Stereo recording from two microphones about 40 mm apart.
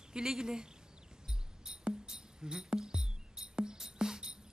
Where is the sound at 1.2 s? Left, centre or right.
Centre.